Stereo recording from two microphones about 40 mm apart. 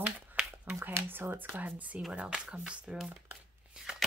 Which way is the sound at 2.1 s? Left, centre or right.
Right.